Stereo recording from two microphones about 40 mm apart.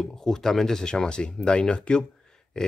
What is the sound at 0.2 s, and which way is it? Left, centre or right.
Speech, centre.